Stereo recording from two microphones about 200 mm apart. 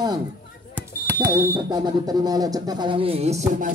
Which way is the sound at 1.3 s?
20° right (ahead or behind).